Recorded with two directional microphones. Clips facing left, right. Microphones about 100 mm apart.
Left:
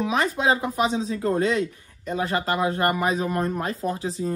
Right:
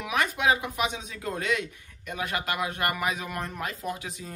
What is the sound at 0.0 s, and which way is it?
Speech, 30° left (ahead or behind).